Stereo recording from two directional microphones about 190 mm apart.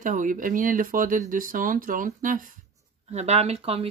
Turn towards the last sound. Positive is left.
turn(degrees=-30)  # may be behind; listen again after turning